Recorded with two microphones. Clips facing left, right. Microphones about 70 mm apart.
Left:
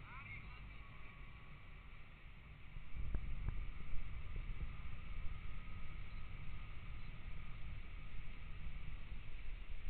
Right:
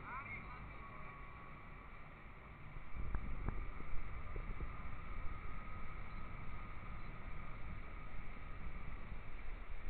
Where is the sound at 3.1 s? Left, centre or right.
Right.